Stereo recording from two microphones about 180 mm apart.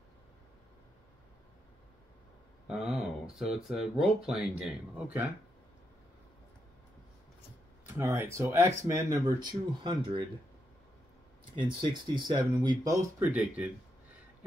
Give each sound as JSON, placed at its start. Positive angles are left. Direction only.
{"t": 2.7, "sound": "speech", "side_deg": -5}
{"t": 8.0, "sound": "speech", "side_deg": -15}
{"t": 11.6, "sound": "speech", "side_deg": -25}
{"t": 13.2, "sound": "speech", "side_deg": -10}